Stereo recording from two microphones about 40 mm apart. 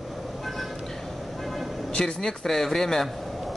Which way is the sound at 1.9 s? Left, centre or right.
Left.